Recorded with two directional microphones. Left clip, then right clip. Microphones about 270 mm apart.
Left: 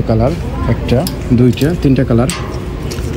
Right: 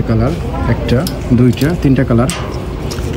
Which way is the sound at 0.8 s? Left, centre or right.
Centre.